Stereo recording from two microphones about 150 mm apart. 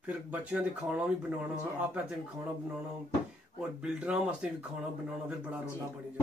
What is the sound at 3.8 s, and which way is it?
Speech, 5° right (ahead or behind).